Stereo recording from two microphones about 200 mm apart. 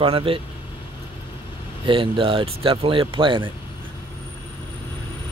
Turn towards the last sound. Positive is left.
turn(degrees=-25)  # may be behind; listen again after turning